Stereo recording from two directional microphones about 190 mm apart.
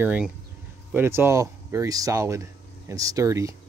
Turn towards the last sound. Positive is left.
turn(degrees=-15)  # may be behind; listen again after turning